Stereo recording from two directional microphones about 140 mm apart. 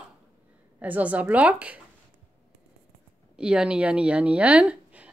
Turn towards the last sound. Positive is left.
turn(degrees=-10)  # may be behind; listen again after turning